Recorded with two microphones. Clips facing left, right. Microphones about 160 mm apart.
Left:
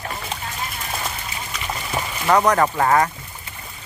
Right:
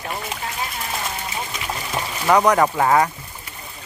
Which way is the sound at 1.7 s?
Centre (ahead or behind).